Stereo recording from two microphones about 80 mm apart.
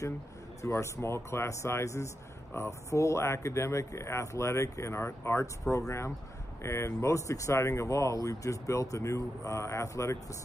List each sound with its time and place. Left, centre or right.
0.6 s speech: left